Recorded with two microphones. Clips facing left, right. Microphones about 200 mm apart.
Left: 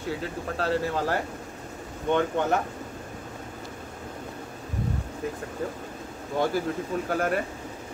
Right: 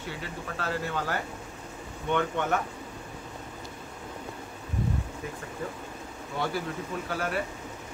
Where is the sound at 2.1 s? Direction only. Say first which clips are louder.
Left 3 dB; 35° left (ahead or behind).